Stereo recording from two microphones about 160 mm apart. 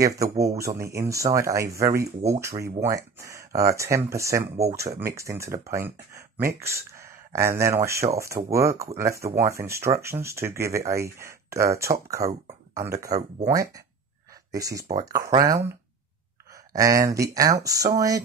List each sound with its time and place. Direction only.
0.0 s speech: 20° right (ahead or behind)